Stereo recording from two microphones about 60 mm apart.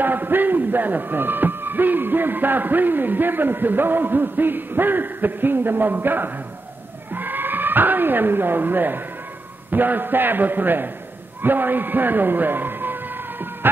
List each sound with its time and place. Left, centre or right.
0.0 s a man's voice: right